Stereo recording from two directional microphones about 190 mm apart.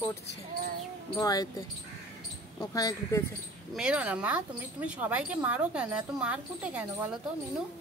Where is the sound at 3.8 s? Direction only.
5° right (ahead or behind).